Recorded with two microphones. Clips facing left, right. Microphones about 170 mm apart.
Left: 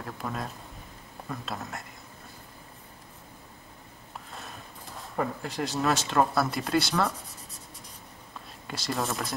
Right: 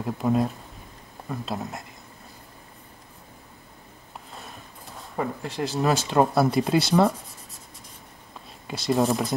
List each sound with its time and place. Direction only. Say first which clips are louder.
0.0 s speech: right 11 dB; 5° right (ahead or behind)
5.1 s speech: right 2 dB; centre (ahead or behind)
8.6 s speech: right 9 dB; centre (ahead or behind)